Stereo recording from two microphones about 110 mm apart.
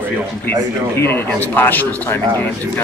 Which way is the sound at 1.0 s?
20° left (ahead or behind).